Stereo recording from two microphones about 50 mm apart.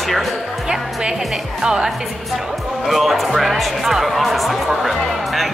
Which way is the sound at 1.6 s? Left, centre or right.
Centre.